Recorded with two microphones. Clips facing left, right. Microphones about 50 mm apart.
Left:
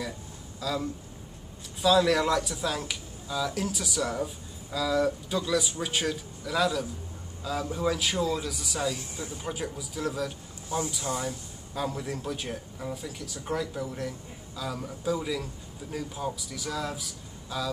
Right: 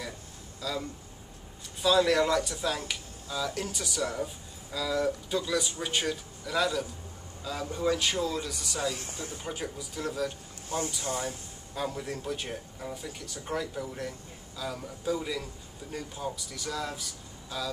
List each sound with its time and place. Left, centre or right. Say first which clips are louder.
0.6 s speech: left 4 dB; centre
8.9 s speech: left 1 dB; right
9.4 s speech: left 3 dB; centre
11.1 s speech: left 1 dB; left
11.7 s speech: left 2 dB; centre